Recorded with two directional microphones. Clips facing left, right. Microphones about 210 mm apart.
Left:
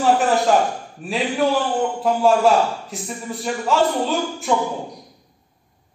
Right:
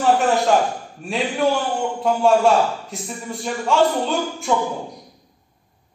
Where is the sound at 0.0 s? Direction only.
Centre (ahead or behind).